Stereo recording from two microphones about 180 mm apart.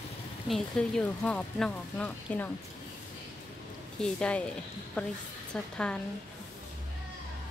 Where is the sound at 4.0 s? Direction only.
5° left (ahead or behind).